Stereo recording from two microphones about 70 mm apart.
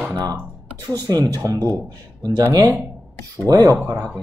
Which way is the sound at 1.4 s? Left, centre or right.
Right.